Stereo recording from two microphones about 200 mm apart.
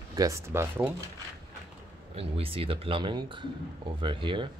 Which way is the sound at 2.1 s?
30° right (ahead or behind).